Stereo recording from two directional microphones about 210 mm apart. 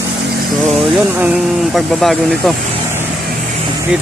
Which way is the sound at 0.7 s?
5° right (ahead or behind).